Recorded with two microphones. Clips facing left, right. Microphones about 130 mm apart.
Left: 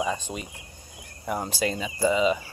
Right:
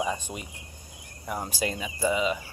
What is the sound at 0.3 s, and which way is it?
Speech, 20° left (ahead or behind).